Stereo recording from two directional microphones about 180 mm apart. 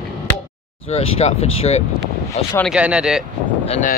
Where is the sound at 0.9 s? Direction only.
35° left (ahead or behind).